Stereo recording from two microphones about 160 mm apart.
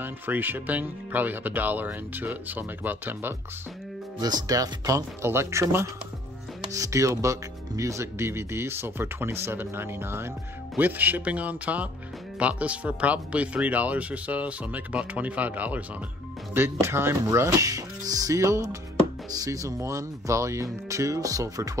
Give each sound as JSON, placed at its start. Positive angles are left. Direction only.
{"t": 0.0, "sound": "speech", "side_deg": -10}
{"t": 4.2, "sound": "speech", "side_deg": -25}